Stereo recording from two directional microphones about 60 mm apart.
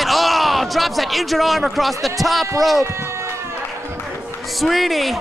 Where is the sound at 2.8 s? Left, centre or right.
Right.